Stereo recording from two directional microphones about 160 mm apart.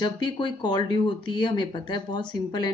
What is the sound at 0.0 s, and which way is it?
Speech, 30° left (ahead or behind).